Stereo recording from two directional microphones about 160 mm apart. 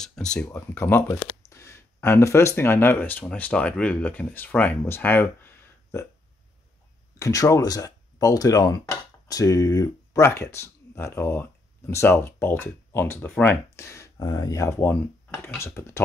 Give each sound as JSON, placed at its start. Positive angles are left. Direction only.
{"t": 0.0, "sound": "speech", "side_deg": 5}
{"t": 7.2, "sound": "speech", "side_deg": 20}